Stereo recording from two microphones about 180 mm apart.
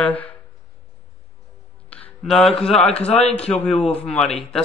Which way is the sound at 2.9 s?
35° left (ahead or behind).